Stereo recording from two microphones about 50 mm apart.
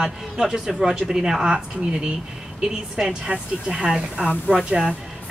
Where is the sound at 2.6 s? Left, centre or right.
Centre.